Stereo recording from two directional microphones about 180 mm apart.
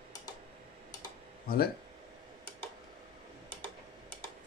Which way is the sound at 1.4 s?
60° left (ahead or behind).